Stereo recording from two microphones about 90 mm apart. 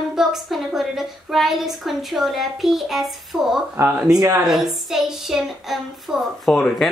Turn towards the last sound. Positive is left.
turn(degrees=5)  # may be behind; listen again after turning